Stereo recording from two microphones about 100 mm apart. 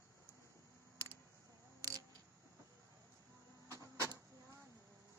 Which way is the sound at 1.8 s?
40° right (ahead or behind).